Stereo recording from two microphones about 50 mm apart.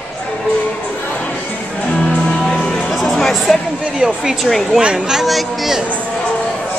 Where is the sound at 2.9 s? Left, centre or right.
Centre.